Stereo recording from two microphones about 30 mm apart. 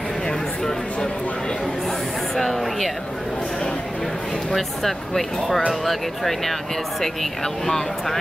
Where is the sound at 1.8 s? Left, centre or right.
Centre.